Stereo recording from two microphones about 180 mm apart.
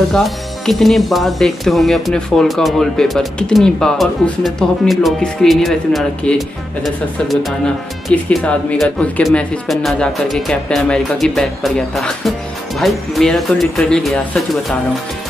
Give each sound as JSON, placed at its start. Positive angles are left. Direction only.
{"t": 0.1, "sound": "speech", "side_deg": 0}